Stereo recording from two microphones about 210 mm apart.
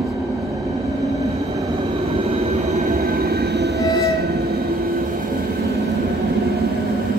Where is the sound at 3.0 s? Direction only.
45° right (ahead or behind).